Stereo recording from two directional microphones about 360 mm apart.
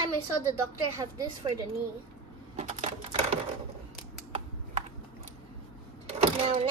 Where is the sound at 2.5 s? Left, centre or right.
Centre.